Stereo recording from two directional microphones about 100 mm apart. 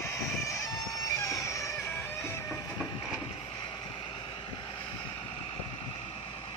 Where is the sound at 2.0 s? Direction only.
25° left (ahead or behind).